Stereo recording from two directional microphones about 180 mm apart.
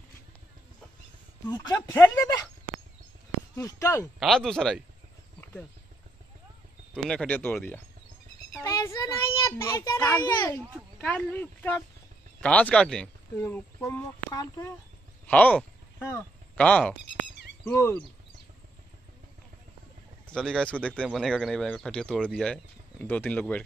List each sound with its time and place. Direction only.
1.5 s a child's voice: 20° left (ahead or behind)
3.5 s a child's voice: 15° left (ahead or behind)
4.2 s speech: centre (ahead or behind)
5.4 s a sound: 10° left (ahead or behind)
6.9 s a child's voice: 5° left (ahead or behind)
20.3 s speech: 5° left (ahead or behind)